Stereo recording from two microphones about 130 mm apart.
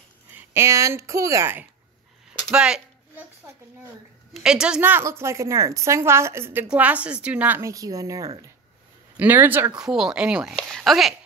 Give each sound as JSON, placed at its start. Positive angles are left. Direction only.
{"t": 0.4, "sound": "a woman's voice", "side_deg": -20}
{"t": 2.5, "sound": "speech", "side_deg": -5}
{"t": 4.3, "sound": "a woman's voice", "side_deg": -5}
{"t": 9.1, "sound": "speech", "side_deg": -15}
{"t": 9.8, "sound": "speech", "side_deg": -5}